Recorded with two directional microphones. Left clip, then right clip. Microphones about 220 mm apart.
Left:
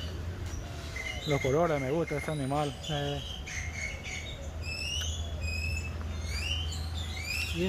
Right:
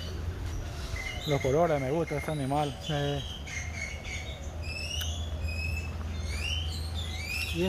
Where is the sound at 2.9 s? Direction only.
35° right (ahead or behind).